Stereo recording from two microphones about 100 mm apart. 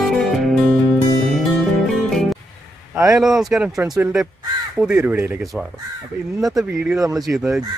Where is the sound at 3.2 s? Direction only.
5° right (ahead or behind).